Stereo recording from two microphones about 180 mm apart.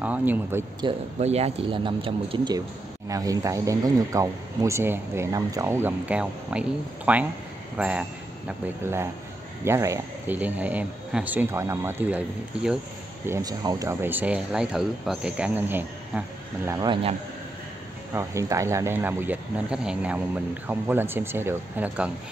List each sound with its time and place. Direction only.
0.0 s speech: 10° right (ahead or behind)
1.2 s speech: 35° right (ahead or behind); by 12.2 s 10° right (ahead or behind)
13.3 s speech: 20° right (ahead or behind)
16.8 s speech: 25° right (ahead or behind)
18.1 s speech: 15° right (ahead or behind)